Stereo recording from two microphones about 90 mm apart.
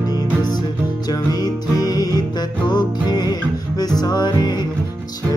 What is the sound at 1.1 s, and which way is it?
Music, 45° left (ahead or behind).